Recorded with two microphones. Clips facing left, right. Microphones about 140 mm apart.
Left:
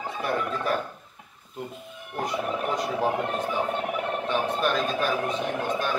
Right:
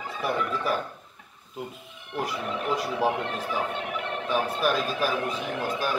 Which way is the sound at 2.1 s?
5° right (ahead or behind).